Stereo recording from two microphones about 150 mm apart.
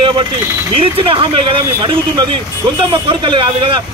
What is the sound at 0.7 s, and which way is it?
Speech, 35° right (ahead or behind).